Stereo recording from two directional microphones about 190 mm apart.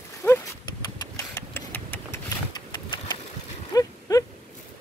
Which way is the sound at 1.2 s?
15° left (ahead or behind).